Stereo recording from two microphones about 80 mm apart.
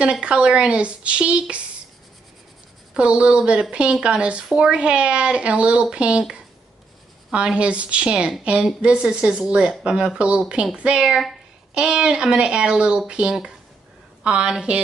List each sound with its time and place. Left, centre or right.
0.0 s a woman's voice: centre
2.9 s a woman's voice: centre